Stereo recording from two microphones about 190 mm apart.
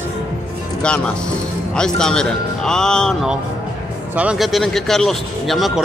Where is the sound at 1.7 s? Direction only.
5° left (ahead or behind).